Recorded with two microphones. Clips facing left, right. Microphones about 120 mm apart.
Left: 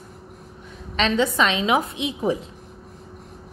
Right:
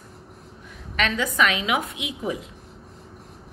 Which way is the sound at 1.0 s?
25° left (ahead or behind).